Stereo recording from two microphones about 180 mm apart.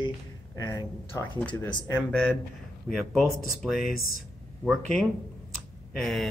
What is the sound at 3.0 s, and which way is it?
Speech, centre (ahead or behind).